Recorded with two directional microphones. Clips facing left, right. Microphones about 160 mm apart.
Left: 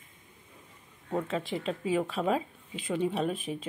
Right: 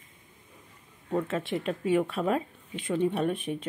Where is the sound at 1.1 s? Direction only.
Centre (ahead or behind).